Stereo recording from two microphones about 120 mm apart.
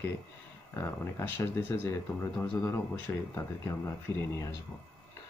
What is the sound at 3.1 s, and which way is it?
Speech, 25° left (ahead or behind).